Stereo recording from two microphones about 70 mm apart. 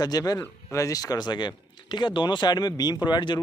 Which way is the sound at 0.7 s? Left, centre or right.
Left.